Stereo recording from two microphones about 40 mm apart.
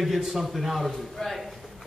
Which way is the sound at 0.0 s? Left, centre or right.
Centre.